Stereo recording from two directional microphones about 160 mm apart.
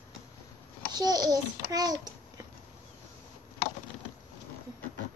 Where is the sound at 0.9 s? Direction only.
25° right (ahead or behind).